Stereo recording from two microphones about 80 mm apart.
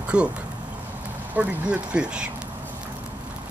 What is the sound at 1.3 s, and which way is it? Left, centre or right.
Speech, centre.